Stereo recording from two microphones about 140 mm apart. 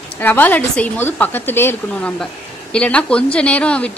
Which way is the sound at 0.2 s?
15° left (ahead or behind).